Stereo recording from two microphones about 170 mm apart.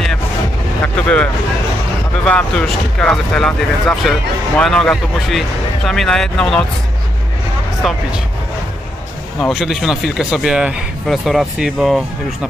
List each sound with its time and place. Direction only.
1.0 s speech: 10° left (ahead or behind)
7.8 s speech: centre (ahead or behind)
9.4 s speech: centre (ahead or behind)